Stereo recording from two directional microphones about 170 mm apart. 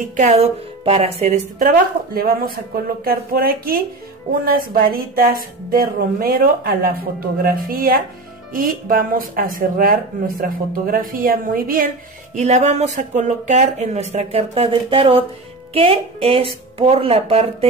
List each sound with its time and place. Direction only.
0.0 s a woman's voice: 50° right (ahead or behind)
12.4 s speech: 40° right (ahead or behind)